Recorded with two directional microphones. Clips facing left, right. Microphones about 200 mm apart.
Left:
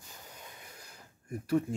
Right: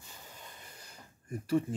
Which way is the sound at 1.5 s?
5° right (ahead or behind).